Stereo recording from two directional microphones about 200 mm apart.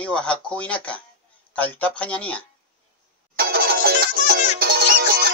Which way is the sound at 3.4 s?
50° right (ahead or behind).